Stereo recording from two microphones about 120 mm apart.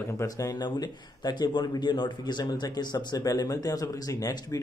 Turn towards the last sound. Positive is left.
turn(degrees=30)  # may be behind; listen again after turning